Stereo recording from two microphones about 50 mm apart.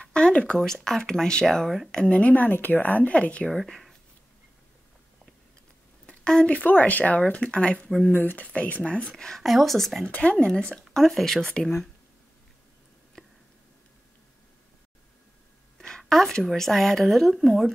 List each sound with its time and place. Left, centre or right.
0.0 s a sound: left
0.7 s speech: centre
2.0 s speech: left
3.5 s speech: centre
6.0 s a sound: centre
6.4 s speech: left
8.1 s speech: left
8.5 s speech: left
9.4 s speech: centre
10.4 s speech: centre
11.0 s speech: centre
16.0 s a sound: centre
16.4 s speech: centre